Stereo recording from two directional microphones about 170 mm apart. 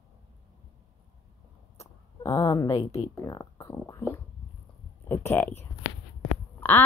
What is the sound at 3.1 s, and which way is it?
Speech, 20° left (ahead or behind).